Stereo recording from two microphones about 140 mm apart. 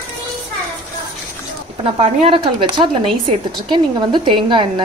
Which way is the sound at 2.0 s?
40° right (ahead or behind).